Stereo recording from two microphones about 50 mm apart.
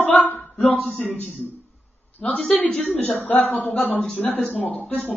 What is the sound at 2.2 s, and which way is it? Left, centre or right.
A woman's voice, centre.